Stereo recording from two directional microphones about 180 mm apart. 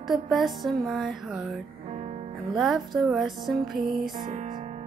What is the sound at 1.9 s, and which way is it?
Music, 35° right (ahead or behind).